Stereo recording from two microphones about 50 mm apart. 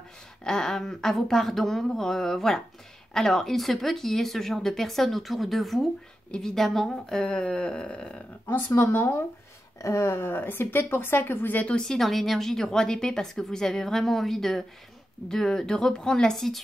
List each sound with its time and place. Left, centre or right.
0.4 s a woman's voice: centre
8.5 s speech: left
8.7 s speech: left
9.8 s speech: left
10.1 s speech: left
11.8 s a woman's voice: centre